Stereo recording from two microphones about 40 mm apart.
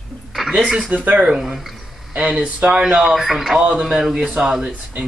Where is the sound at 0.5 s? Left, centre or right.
Centre.